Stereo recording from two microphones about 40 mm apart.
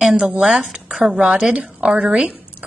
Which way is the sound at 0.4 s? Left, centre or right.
Centre.